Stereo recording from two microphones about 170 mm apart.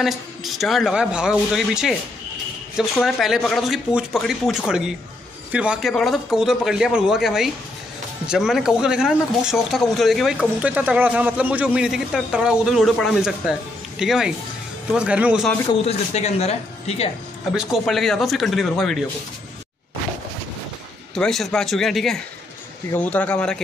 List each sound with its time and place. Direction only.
0.0 s speech: centre (ahead or behind)
15.8 s speech: 40° left (ahead or behind)
17.5 s speech: centre (ahead or behind)
21.1 s speech: centre (ahead or behind)